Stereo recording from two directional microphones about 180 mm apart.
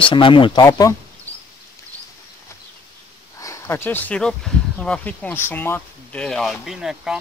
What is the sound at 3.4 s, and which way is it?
Speech, 15° left (ahead or behind).